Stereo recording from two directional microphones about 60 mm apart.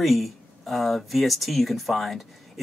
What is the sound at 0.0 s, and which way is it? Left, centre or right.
Speech, centre.